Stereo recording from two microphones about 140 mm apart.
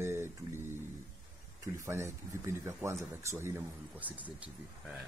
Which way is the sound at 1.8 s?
20° right (ahead or behind).